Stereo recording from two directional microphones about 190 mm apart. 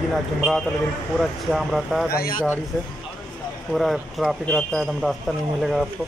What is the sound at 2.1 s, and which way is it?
Speech, 50° left (ahead or behind).